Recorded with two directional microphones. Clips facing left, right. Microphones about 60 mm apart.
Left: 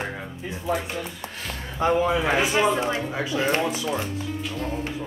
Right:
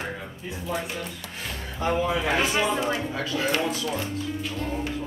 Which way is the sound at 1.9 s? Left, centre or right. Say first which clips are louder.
Left 3 dB; left.